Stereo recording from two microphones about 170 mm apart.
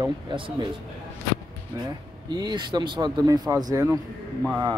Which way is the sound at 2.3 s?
25° right (ahead or behind).